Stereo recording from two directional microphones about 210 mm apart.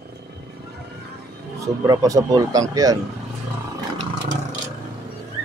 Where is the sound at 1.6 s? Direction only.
15° right (ahead or behind).